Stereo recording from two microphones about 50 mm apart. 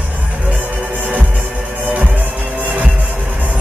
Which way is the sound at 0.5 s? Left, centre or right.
Right.